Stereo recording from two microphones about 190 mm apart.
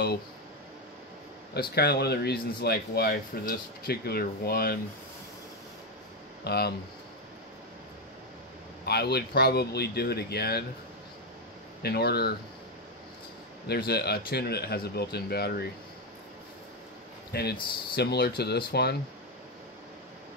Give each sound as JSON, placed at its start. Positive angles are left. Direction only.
{"t": 1.5, "sound": "a man's voice", "side_deg": 55}
{"t": 6.4, "sound": "speech", "side_deg": 60}
{"t": 8.8, "sound": "a man's voice", "side_deg": 60}
{"t": 11.8, "sound": "a man's voice", "side_deg": 55}
{"t": 13.7, "sound": "a man's voice", "side_deg": 55}
{"t": 17.3, "sound": "a man's voice", "side_deg": 55}